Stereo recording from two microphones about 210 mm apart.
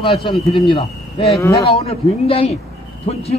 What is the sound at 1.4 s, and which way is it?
Speech, 15° left (ahead or behind).